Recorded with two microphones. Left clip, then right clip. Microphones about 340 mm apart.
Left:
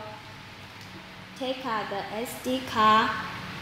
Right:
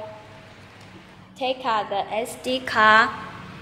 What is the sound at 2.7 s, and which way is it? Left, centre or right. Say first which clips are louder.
Speech: right 5 dB; right.